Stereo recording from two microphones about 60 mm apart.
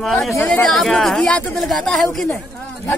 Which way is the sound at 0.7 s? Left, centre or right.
Centre.